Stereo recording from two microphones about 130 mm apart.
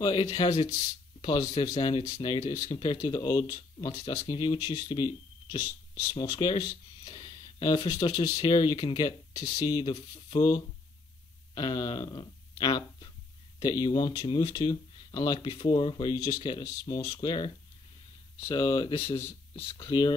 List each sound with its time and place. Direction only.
0.0 s speech: 40° left (ahead or behind)
11.5 s speech: 35° left (ahead or behind)
18.5 s speech: 40° left (ahead or behind)